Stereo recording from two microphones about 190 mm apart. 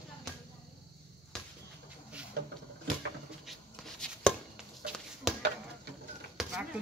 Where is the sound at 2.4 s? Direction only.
60° right (ahead or behind).